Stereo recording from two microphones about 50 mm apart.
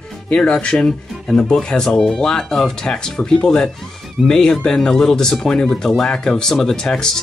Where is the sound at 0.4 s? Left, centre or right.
Centre.